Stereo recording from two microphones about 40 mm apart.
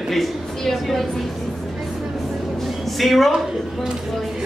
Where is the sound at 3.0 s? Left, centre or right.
Centre.